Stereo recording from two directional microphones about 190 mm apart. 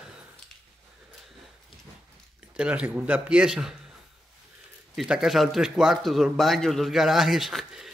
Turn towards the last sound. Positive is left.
turn(degrees=0)  # may be behind; listen again after turning